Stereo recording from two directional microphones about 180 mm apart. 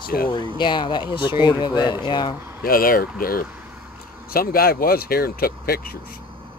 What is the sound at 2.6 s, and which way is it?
Speech, 55° left (ahead or behind).